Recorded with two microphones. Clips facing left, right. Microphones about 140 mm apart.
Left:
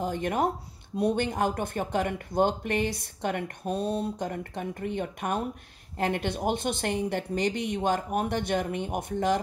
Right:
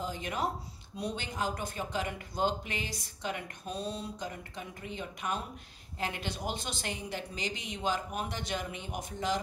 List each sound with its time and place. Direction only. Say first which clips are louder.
0.0 s speech: left 7 dB; 55° left (ahead or behind)